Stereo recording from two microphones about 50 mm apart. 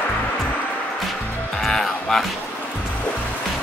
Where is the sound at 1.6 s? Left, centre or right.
Centre.